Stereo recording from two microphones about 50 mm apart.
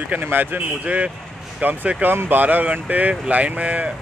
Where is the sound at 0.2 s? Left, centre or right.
Right.